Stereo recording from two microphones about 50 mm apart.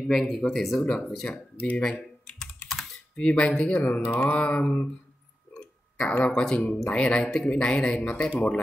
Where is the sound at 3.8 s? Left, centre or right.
Left.